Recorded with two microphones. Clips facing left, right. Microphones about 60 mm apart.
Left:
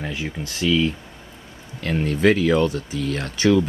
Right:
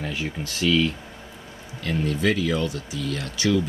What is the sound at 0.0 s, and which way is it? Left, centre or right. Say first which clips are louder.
Speech: left 1 dB; centre.